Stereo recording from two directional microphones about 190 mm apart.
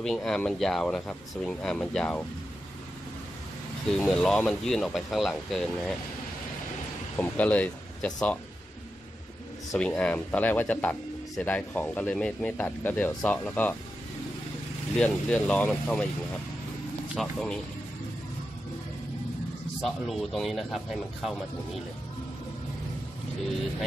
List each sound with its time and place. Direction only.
0.0 s speech: 5° left (ahead or behind)
3.9 s speech: 5° left (ahead or behind)
7.2 s speech: 10° left (ahead or behind)
9.8 s speech: 5° left (ahead or behind)
15.0 s speech: 5° left (ahead or behind)
17.1 s speech: centre (ahead or behind)
19.8 s speech: centre (ahead or behind)